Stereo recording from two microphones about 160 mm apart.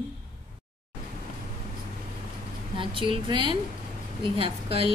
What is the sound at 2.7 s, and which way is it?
A woman's voice, 30° right (ahead or behind).